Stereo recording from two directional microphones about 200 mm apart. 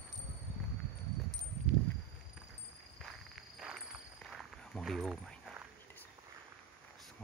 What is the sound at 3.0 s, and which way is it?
Walk, centre (ahead or behind).